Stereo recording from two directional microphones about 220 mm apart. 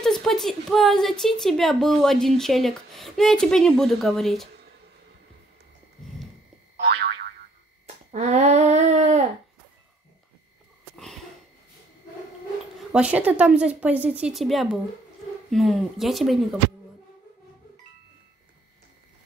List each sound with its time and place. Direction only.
0.0 s a woman's voice: centre (ahead or behind)
6.8 s boing: 45° right (ahead or behind)
7.8 s a sound: 30° right (ahead or behind)
12.9 s a woman's voice: 5° right (ahead or behind)